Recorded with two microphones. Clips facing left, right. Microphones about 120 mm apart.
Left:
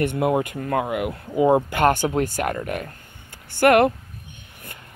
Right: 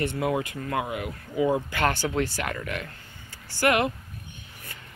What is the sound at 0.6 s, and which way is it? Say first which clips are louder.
Speech: left 5 dB; 45° left (ahead or behind).